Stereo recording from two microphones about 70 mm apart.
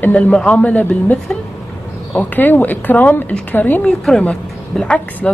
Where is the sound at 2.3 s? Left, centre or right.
Left.